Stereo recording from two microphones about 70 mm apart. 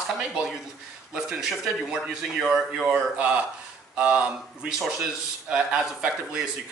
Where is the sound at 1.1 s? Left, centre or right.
Centre.